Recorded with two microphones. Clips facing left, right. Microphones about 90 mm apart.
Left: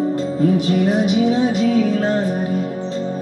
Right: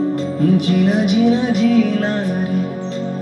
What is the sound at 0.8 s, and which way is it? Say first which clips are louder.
Music: right 3 dB; 60° right (ahead or behind).